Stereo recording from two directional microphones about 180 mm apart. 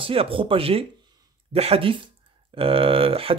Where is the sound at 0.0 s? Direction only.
30° right (ahead or behind).